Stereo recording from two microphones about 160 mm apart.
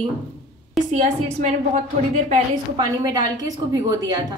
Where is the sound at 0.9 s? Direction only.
50° right (ahead or behind).